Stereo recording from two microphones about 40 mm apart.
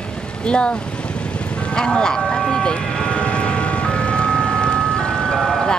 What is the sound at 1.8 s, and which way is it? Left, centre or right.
Vehicle, left.